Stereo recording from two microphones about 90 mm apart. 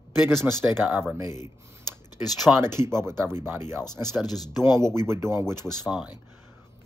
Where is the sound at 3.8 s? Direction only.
45° left (ahead or behind).